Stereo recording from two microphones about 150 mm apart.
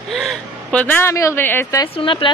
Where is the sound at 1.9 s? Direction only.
35° left (ahead or behind).